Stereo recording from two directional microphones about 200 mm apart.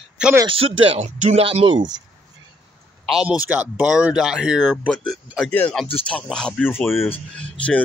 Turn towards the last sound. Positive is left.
turn(degrees=5)  # may be behind; listen again after turning